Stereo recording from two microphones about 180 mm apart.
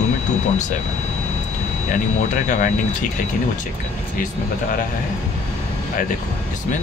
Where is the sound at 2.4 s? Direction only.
45° left (ahead or behind).